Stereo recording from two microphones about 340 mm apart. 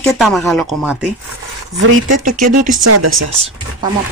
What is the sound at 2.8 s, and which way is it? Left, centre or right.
Speech, right.